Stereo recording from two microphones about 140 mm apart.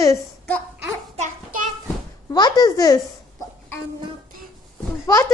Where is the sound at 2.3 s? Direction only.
30° left (ahead or behind).